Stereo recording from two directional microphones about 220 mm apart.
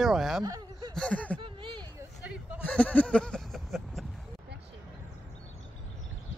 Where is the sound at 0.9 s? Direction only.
5° left (ahead or behind).